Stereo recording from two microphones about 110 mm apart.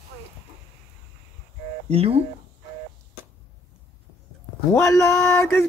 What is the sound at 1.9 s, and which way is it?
Speech, 65° right (ahead or behind).